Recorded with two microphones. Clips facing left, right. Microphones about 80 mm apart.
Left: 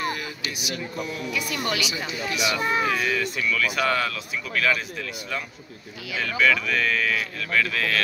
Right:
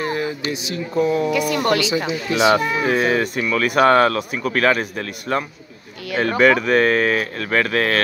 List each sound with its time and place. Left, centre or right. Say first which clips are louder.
0.0 s speech: right 7 dB; right
1.3 s speech: right 9 dB; right
1.8 s speech: right 8 dB; right
2.9 s speech: right 7 dB; right